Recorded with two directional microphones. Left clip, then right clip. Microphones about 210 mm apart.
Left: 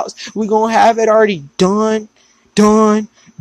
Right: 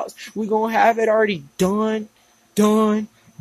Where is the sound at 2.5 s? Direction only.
20° left (ahead or behind).